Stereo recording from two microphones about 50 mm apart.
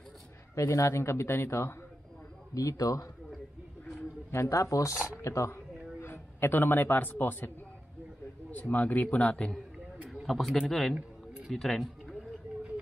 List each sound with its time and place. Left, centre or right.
0.6 s a man's voice: left
2.8 s speech: left
4.3 s speech: left
4.9 s speech: right
5.2 s a man's voice: left
10.2 s a man's voice: centre
11.5 s a sound: centre